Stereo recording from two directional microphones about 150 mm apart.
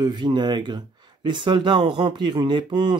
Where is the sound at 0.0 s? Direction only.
30° right (ahead or behind).